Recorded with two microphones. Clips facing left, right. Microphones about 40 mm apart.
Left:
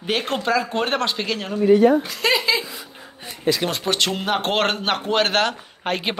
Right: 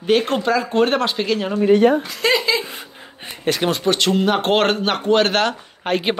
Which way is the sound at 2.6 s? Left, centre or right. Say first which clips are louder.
Right 2 dB; right.